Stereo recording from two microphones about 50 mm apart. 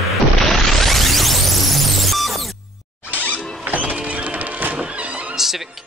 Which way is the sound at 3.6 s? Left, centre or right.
Right.